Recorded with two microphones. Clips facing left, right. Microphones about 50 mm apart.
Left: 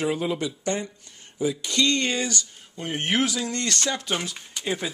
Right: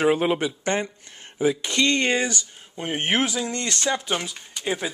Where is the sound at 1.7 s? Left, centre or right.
Right; by 4.1 s centre.